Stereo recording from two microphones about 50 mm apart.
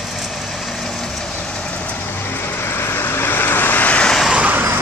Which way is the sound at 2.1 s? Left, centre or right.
Left.